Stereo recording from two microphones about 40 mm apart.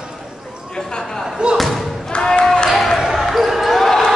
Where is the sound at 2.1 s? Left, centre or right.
Left.